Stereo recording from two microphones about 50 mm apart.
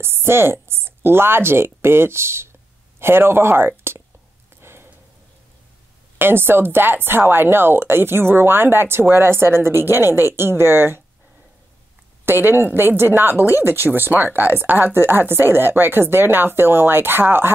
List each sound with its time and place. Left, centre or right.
0.0 s a woman's voice: right
4.6 s a sound: right
6.1 s speech: right
12.3 s speech: right